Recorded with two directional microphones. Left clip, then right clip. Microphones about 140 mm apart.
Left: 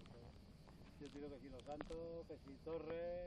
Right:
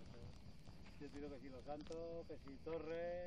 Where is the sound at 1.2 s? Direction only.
40° right (ahead or behind).